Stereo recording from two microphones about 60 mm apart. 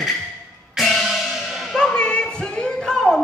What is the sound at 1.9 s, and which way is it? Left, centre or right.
A capella, centre.